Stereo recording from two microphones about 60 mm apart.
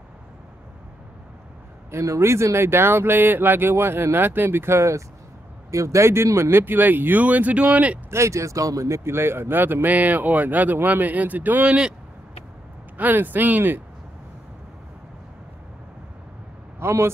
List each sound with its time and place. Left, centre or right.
1.9 s speech: right
8.1 s speech: right
11.6 s speech: centre
12.9 s speech: right
16.8 s speech: right